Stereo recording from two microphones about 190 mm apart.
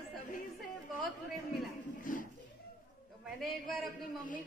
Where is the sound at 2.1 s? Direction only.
45° left (ahead or behind).